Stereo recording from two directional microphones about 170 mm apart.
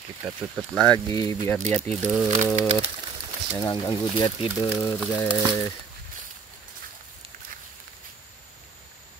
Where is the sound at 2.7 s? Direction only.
35° right (ahead or behind).